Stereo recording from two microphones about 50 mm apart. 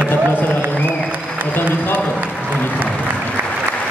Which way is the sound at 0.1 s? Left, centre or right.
Left.